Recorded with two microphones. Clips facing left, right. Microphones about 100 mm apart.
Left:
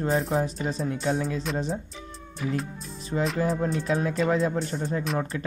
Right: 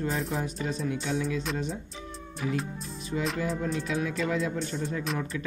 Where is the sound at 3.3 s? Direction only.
35° left (ahead or behind).